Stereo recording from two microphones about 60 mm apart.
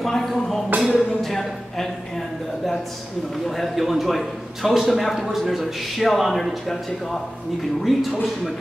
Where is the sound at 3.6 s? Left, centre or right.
Centre.